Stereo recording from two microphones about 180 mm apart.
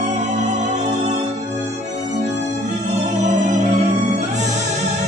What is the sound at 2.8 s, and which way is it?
Music, 40° right (ahead or behind).